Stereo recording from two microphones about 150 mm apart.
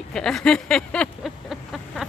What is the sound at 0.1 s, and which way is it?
Speech, 5° left (ahead or behind).